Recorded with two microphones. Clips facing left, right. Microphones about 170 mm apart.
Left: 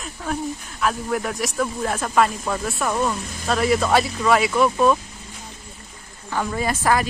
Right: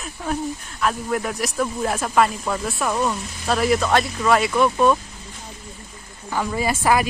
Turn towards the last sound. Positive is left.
turn(degrees=-10)  # may be behind; listen again after turning